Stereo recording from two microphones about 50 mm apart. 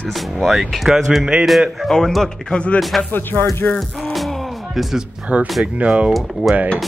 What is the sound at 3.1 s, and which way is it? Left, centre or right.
Speech, left.